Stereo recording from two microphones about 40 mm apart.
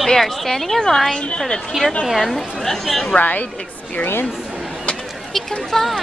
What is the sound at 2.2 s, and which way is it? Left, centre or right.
Speech, centre.